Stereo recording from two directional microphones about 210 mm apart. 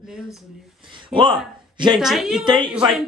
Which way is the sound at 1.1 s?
25° right (ahead or behind).